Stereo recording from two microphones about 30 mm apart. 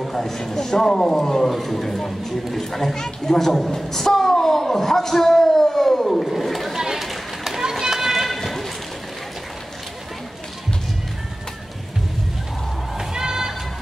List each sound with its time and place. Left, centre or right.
0.0 s a man's voice: centre
6.2 s chatter: centre
6.8 s a sound: centre
7.8 s run: centre
12.9 s run: centre